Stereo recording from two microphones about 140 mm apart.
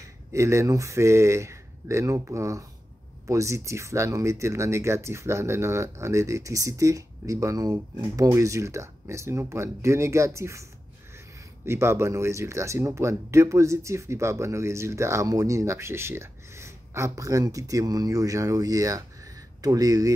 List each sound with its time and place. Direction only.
0.3 s speech: 20° right (ahead or behind)